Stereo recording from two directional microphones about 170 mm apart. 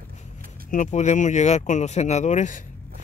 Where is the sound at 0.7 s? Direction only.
45° left (ahead or behind).